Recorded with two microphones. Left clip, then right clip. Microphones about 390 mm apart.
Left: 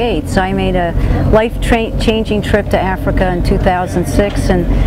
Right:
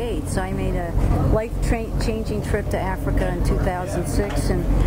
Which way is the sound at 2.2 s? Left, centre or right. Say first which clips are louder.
Left 11 dB; left.